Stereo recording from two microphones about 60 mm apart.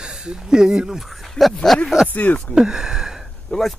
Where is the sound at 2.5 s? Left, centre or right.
Centre.